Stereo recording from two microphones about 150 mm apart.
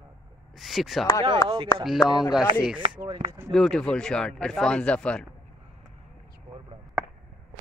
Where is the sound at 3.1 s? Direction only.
30° right (ahead or behind).